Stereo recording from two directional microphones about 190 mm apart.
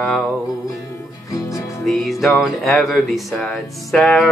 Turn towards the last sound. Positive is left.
turn(degrees=5)  # may be behind; listen again after turning